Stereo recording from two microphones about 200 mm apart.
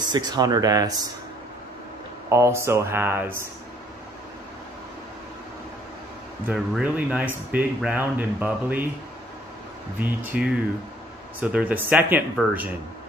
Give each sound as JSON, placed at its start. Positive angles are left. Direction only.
{"t": 0.1, "sound": "speech", "side_deg": -20}
{"t": 2.2, "sound": "speech", "side_deg": -15}
{"t": 6.4, "sound": "speech", "side_deg": -5}
{"t": 9.9, "sound": "speech", "side_deg": -10}